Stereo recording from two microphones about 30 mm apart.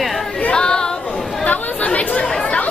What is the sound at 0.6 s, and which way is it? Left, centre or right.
Chatter, left.